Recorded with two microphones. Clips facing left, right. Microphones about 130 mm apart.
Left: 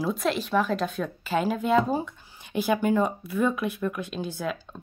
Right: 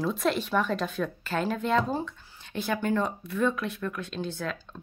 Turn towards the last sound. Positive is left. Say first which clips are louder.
# left 2 dB
turn(degrees=10)  # may be behind; listen again after turning